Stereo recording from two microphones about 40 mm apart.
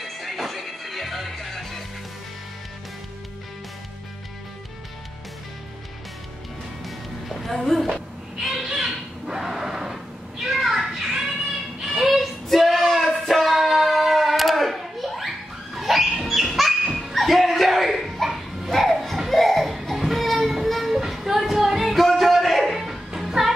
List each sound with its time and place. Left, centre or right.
0.0 s music: centre
7.2 s music: centre
8.5 s a sound: centre
10.4 s children playing: centre
11.8 s female singing: centre
16.3 s dog: centre
17.1 s a sound: centre